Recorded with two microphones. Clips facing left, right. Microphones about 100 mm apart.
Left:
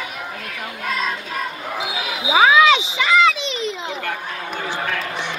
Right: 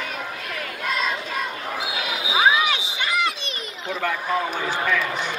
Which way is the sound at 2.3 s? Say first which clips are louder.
Left 7 dB; 90° left.